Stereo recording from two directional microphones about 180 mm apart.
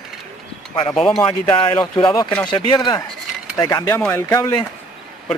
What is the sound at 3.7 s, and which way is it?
Speech, 15° left (ahead or behind).